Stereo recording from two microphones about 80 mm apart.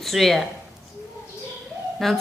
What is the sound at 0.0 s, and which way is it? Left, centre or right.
Speech, centre.